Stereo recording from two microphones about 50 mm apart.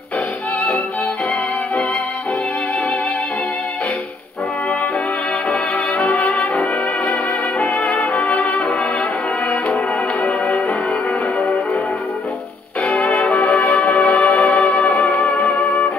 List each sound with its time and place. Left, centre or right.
5.5 s brass instrument: left
6.6 s music: left
12.8 s music: left